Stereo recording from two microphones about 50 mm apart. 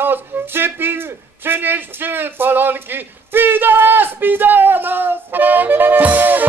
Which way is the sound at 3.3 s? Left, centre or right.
Right.